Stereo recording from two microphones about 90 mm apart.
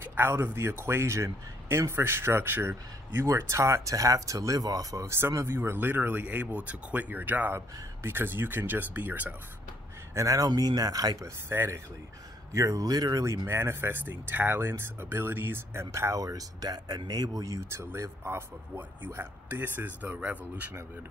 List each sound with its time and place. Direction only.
0.0 s speech: 25° right (ahead or behind)
10.1 s speech: 40° right (ahead or behind)
11.4 s speech: 25° right (ahead or behind)
12.5 s speech: 35° right (ahead or behind); by 20.7 s 15° right (ahead or behind)